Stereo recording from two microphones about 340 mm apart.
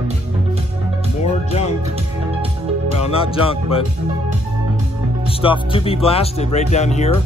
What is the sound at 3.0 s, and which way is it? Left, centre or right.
Speech, centre.